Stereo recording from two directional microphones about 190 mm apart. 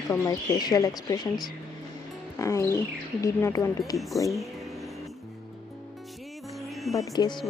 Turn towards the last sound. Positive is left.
turn(degrees=20)  # may be behind; listen again after turning